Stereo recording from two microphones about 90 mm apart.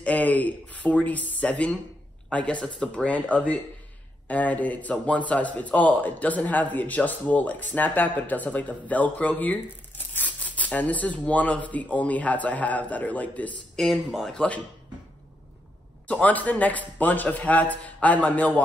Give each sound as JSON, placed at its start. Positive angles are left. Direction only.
{"t": 0.0, "sound": "a man's voice", "side_deg": 15}
{"t": 13.7, "sound": "speech", "side_deg": 5}
{"t": 16.1, "sound": "a man's voice", "side_deg": 15}